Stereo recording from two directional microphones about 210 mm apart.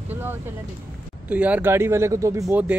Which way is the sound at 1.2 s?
5° right (ahead or behind).